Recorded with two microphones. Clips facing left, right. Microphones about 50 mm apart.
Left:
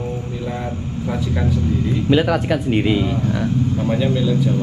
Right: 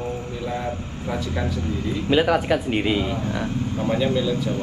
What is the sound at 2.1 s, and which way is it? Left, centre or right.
Speech, centre.